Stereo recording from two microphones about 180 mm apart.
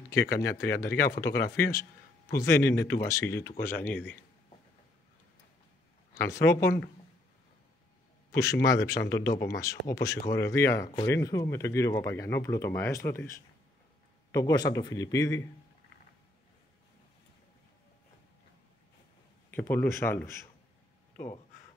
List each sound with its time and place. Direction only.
0.4 s speech: 15° left (ahead or behind)
6.1 s speech: 15° left (ahead or behind)
8.3 s speech: 15° left (ahead or behind)
14.3 s a man's voice: 20° left (ahead or behind)
19.5 s speech: 10° left (ahead or behind)